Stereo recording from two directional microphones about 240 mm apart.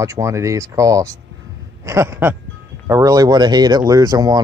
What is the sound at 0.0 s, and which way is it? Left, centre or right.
Speech, centre.